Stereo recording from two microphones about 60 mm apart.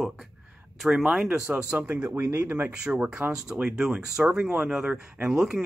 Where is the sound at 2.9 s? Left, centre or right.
Right.